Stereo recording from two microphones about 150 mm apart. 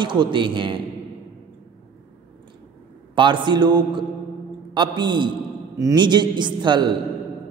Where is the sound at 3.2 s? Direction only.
30° right (ahead or behind).